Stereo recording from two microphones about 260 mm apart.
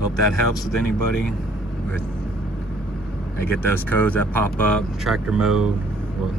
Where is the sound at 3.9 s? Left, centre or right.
Centre.